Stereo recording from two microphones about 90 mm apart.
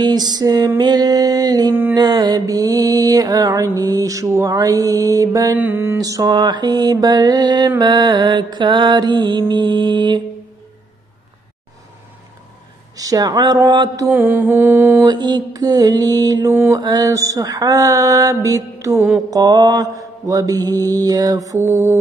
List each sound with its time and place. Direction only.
0.0 s mantra: 50° right (ahead or behind)
5.6 s mantra: 20° right (ahead or behind)
5.9 s mantra: 40° right (ahead or behind)
6.3 s mantra: 55° right (ahead or behind)
12.9 s mantra: 40° right (ahead or behind)
14.0 s mantra: 20° right (ahead or behind)
15.0 s mantra: 55° right (ahead or behind); by 19.0 s 35° right (ahead or behind)
19.3 s mantra: 45° right (ahead or behind)